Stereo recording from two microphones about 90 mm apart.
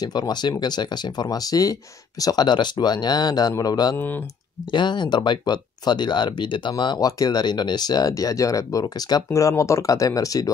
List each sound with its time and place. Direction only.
0.0 s speech: 50° left (ahead or behind)
3.9 s speech: 20° left (ahead or behind)
4.7 s speech: 60° left (ahead or behind)
7.1 s speech: 45° left (ahead or behind)